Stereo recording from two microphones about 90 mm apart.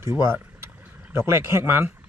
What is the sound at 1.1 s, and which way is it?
Speech, 30° right (ahead or behind).